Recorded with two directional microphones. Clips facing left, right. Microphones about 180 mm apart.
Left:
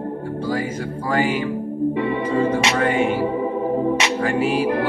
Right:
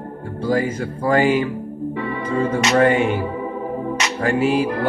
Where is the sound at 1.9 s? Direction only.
25° left (ahead or behind).